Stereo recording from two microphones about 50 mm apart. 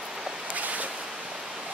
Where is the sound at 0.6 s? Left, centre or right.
Right.